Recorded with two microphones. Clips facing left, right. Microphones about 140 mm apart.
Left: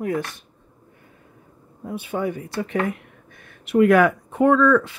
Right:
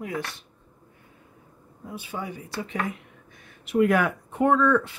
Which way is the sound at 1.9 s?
60° left (ahead or behind).